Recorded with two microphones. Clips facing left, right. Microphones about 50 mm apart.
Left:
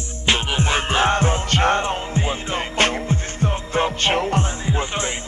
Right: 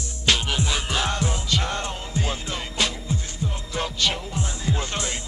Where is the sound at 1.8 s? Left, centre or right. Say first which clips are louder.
Left 6 dB; left.